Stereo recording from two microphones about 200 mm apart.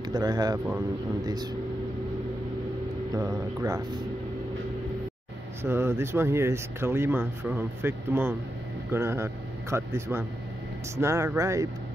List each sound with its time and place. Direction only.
0.1 s speech: 20° right (ahead or behind)
3.2 s speech: 15° right (ahead or behind)
5.6 s speech: 10° right (ahead or behind)